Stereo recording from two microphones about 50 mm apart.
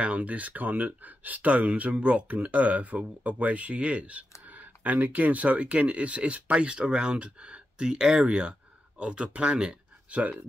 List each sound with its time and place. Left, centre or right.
0.0 s speech: right